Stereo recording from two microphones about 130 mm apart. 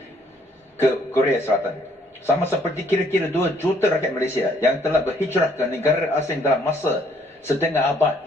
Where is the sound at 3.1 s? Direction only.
20° left (ahead or behind).